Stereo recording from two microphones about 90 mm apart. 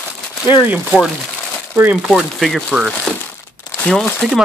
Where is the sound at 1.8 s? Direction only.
15° right (ahead or behind).